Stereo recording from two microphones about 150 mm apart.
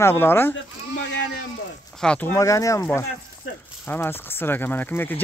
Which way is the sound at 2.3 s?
20° left (ahead or behind).